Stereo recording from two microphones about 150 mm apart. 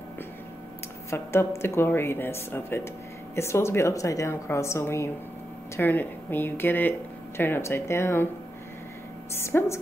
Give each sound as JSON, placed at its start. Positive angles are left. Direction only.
{"t": 1.1, "sound": "a woman's voice", "side_deg": 15}
{"t": 9.3, "sound": "speech", "side_deg": 15}